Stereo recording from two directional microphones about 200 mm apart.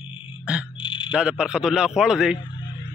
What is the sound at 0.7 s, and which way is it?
Frog, 25° left (ahead or behind).